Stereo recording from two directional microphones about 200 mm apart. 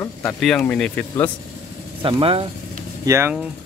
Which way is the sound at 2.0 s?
25° right (ahead or behind).